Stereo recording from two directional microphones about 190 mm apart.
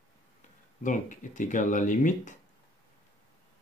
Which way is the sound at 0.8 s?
45° left (ahead or behind).